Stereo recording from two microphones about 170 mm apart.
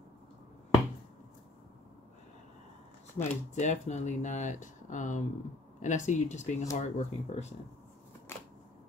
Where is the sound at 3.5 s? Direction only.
45° left (ahead or behind).